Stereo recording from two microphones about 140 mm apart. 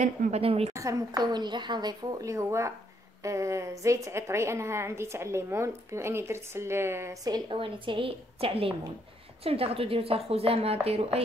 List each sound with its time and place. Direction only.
0.0 s a woman's voice: 60° right (ahead or behind)
0.4 s a woman's voice: 45° right (ahead or behind)
0.7 s a woman's voice: 25° right (ahead or behind); by 11.1 s 45° right (ahead or behind)